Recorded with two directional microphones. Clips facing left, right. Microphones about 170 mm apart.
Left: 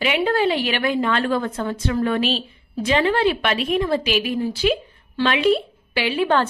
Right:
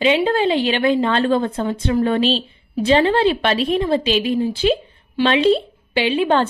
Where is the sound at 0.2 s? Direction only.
20° right (ahead or behind).